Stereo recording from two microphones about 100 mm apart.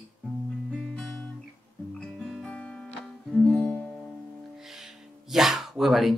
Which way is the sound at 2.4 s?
15° left (ahead or behind).